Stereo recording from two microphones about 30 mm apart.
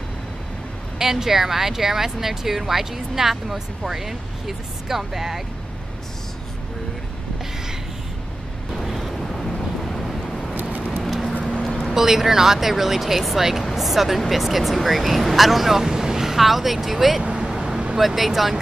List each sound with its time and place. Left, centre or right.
0.9 s speech: centre
8.8 s vehicle: centre
10.5 s vehicle: right
10.9 s a sound: centre
11.9 s speech: centre
15.7 s speech: centre
17.5 s vehicle: centre
17.9 s speech: centre